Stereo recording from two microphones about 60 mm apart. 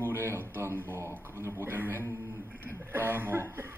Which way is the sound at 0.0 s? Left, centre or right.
Right.